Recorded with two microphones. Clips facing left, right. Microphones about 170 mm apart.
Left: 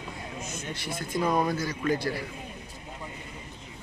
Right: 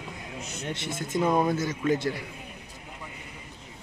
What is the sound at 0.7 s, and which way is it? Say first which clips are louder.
Speech: right 3 dB; 25° right (ahead or behind).